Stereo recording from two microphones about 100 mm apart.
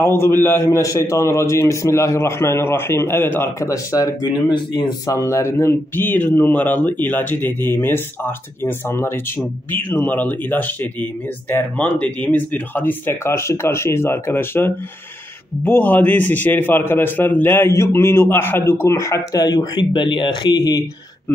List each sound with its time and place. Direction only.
0.0 s a man's voice: 25° left (ahead or behind); by 5.1 s 45° left (ahead or behind)
5.1 s a man's voice: 30° left (ahead or behind); by 20.8 s 45° left (ahead or behind)